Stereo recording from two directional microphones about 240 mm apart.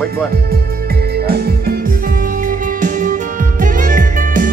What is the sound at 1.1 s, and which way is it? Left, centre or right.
Music, right.